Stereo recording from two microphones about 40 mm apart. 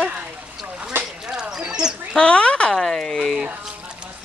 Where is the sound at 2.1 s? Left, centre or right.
Left.